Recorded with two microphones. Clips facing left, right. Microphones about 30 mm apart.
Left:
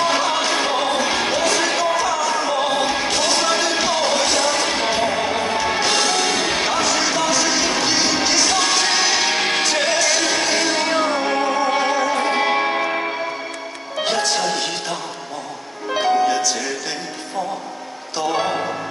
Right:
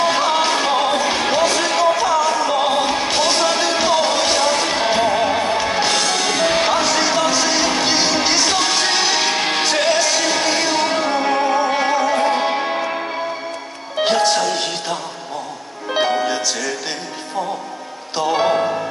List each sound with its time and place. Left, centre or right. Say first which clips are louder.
0.0 s music: right 2 dB; centre
3.1 s music: right 2 dB; centre
3.3 s music: right 1 dB; centre
13.9 s music: right 5 dB; centre
14.5 s music: right 1 dB; centre
15.9 s music: left 1 dB; right
18.1 s music: right 4 dB; centre